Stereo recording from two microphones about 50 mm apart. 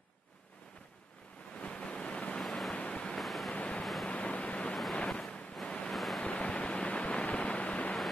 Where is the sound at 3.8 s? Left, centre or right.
Centre.